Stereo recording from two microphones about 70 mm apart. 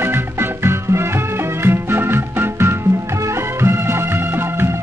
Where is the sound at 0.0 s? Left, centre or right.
Right.